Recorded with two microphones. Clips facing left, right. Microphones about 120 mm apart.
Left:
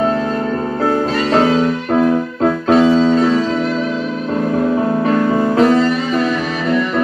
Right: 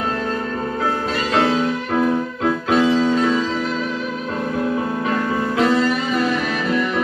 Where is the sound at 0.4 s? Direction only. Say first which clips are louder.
Left 5 dB; 40° left (ahead or behind).